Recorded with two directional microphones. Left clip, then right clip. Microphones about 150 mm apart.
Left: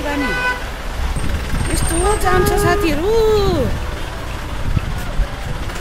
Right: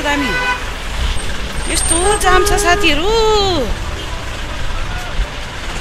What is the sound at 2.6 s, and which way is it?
Speech, 15° left (ahead or behind).